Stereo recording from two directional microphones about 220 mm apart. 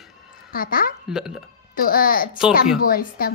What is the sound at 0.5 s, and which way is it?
Speech, 40° left (ahead or behind).